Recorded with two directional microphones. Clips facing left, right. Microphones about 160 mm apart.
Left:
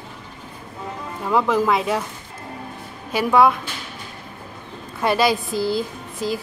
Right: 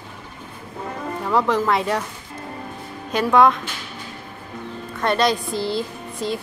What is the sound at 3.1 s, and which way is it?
Speech, 10° left (ahead or behind).